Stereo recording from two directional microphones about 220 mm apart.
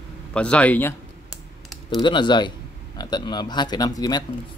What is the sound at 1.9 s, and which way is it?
Speech, 20° left (ahead or behind).